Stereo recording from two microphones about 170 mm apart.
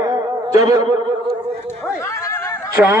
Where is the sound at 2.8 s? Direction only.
5° right (ahead or behind).